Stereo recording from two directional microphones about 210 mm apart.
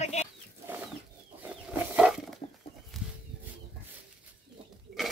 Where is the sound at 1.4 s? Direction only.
5° right (ahead or behind).